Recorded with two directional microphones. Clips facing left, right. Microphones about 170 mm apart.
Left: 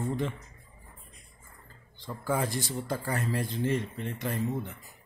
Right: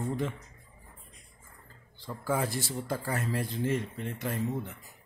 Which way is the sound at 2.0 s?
5° right (ahead or behind).